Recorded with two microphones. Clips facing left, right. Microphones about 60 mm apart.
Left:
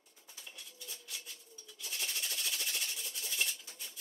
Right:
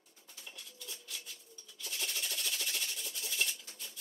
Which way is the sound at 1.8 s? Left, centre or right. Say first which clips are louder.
Right 1 dB; centre.